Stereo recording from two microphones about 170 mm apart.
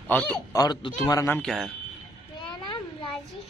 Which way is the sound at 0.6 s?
25° left (ahead or behind).